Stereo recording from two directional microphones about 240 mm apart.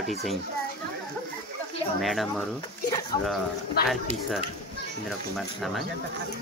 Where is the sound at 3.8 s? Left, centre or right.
Left.